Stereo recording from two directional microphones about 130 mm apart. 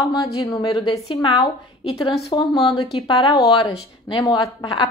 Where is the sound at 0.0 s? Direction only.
25° left (ahead or behind).